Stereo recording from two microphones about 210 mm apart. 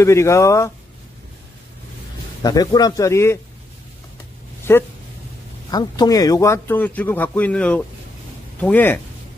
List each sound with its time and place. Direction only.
0.0 s a man's voice: 15° left (ahead or behind)
2.4 s a man's voice: 20° left (ahead or behind)
4.7 s a man's voice: 10° left (ahead or behind)